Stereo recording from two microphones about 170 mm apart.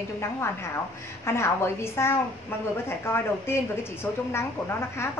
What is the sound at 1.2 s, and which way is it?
A woman's voice, 15° left (ahead or behind).